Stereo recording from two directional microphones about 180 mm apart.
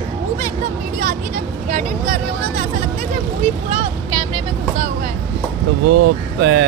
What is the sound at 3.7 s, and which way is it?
Speech, 30° right (ahead or behind).